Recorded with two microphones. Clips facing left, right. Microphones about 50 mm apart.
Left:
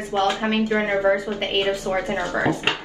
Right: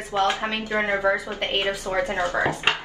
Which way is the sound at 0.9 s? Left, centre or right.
Right.